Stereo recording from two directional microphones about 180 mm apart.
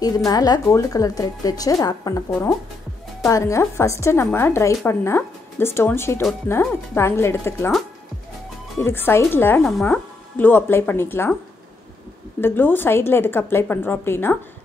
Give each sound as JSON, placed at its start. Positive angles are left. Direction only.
{"t": 0.0, "sound": "a woman's voice", "side_deg": 20}
{"t": 8.7, "sound": "a woman's voice", "side_deg": 15}
{"t": 12.4, "sound": "a woman's voice", "side_deg": 10}